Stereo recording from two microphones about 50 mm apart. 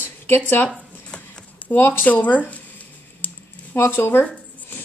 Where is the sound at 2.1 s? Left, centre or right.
Left.